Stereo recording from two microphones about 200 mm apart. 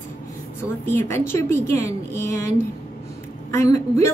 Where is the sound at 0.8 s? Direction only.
10° left (ahead or behind).